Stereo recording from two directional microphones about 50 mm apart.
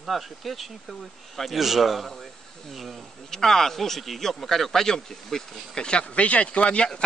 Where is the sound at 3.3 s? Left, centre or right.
Centre.